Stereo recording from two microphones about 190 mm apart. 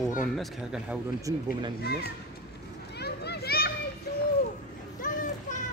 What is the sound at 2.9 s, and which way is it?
Children playing, 60° left (ahead or behind).